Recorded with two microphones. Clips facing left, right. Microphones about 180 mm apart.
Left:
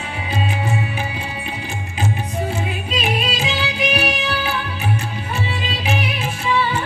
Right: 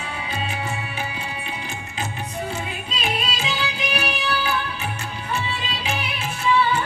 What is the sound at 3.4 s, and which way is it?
Music, 35° left (ahead or behind).